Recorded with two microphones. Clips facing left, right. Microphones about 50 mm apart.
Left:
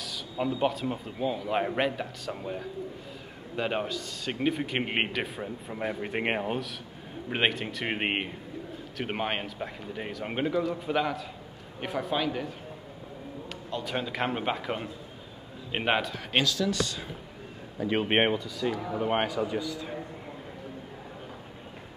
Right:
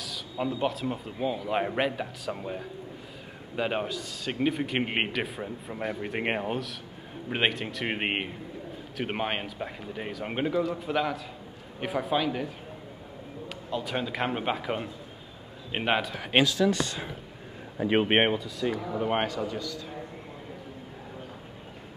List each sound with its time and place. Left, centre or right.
0.0 s a man's voice: centre
13.7 s a man's voice: centre
16.3 s a man's voice: right; by 20.0 s centre